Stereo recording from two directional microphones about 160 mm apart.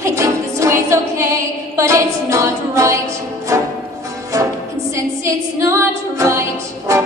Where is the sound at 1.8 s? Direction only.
20° right (ahead or behind).